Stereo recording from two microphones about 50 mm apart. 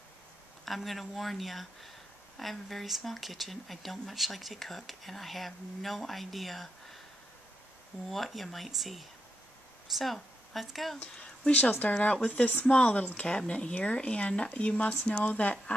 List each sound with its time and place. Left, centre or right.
0.7 s speech: centre
8.1 s speech: centre
11.2 s a sound: centre
11.7 s speech: left